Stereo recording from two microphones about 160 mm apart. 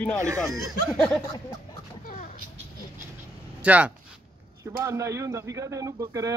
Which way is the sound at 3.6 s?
10° right (ahead or behind).